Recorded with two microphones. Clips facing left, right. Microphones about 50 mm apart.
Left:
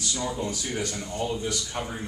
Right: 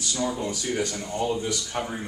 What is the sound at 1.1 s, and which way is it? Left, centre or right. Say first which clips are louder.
Speech: right 3 dB; centre.